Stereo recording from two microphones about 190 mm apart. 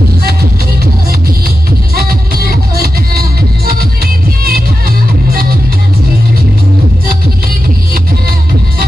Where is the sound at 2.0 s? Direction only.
55° right (ahead or behind).